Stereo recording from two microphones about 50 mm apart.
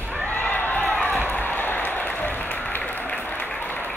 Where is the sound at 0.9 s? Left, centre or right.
Left.